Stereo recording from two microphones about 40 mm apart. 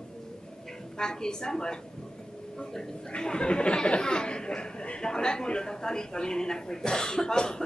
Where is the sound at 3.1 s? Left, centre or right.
Left.